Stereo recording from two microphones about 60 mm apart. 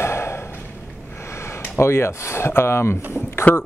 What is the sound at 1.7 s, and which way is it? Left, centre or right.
Speech, left.